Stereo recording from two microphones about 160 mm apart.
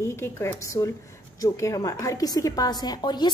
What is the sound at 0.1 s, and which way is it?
A woman's voice, 15° left (ahead or behind).